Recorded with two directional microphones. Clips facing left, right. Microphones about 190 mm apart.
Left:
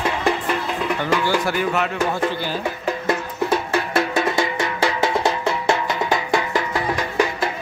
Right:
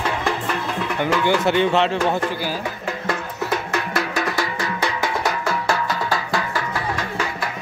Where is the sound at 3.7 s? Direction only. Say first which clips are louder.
Left 3 dB; 25° left (ahead or behind).